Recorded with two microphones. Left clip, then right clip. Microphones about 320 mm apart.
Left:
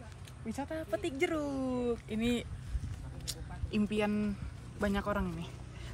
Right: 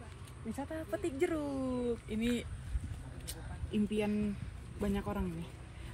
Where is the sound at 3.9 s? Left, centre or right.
Centre.